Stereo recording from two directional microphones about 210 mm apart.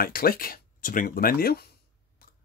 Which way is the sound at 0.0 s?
45° left (ahead or behind).